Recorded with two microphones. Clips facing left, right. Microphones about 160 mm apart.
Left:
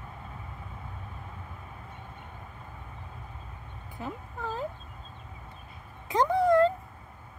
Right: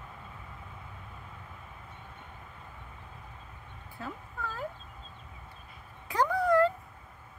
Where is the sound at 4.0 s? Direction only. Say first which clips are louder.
Left 3 dB; 20° left (ahead or behind).